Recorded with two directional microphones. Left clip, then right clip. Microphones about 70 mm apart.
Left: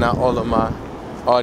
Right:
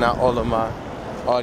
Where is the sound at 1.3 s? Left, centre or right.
Left.